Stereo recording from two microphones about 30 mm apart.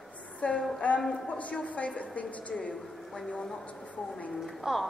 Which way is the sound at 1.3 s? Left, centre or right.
Left.